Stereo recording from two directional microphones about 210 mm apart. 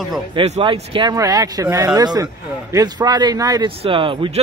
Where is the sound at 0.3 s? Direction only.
25° right (ahead or behind).